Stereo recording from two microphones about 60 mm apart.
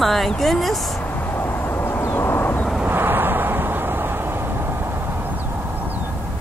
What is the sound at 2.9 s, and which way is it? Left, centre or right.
Vehicle, right.